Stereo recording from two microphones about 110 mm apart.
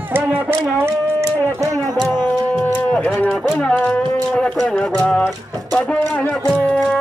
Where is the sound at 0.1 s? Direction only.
20° right (ahead or behind).